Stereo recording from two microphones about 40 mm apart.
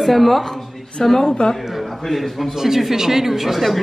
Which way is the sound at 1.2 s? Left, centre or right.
Centre.